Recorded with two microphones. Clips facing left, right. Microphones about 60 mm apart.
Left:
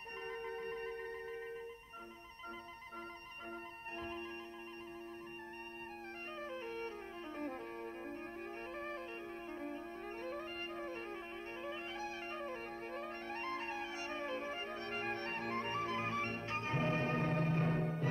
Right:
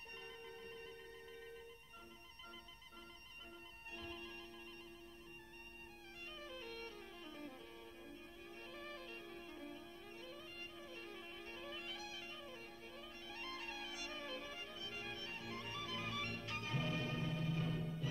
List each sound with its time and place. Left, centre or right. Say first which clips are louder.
0.3 s music: left 14 dB; left
6.4 s music: left 8 dB; left
7.3 s music: left 10 dB; left